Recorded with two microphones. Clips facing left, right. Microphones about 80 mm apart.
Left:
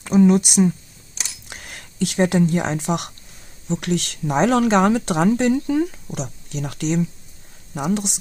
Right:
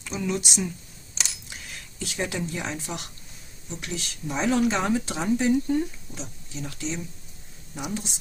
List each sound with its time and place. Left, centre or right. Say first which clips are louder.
0.0 s speech: left 14 dB; left
3.6 s speech: left 12 dB; left